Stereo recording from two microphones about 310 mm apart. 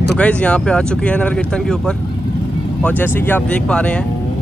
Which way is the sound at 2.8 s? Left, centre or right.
Centre.